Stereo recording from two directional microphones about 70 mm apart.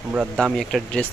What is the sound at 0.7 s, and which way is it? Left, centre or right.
Speech, centre.